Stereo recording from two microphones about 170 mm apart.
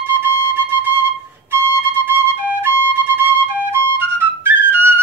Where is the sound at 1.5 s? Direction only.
10° right (ahead or behind).